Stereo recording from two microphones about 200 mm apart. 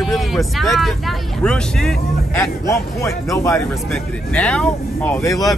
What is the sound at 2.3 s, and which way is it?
Speech, 15° left (ahead or behind).